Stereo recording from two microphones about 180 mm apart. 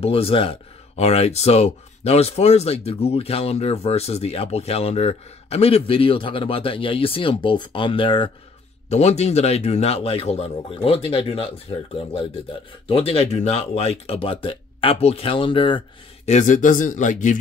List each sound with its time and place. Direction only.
0.0 s speech: 30° left (ahead or behind)
16.3 s a man's voice: 45° left (ahead or behind)